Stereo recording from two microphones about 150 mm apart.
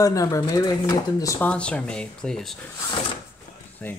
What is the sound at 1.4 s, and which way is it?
Speech, 10° left (ahead or behind).